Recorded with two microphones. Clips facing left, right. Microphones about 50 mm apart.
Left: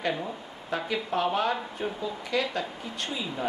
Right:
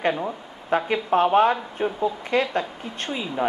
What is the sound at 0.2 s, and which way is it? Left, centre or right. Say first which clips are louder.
A man's voice: right 6 dB; right.